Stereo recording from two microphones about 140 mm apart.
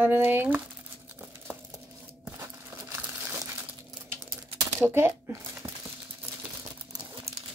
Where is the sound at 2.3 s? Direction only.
15° right (ahead or behind).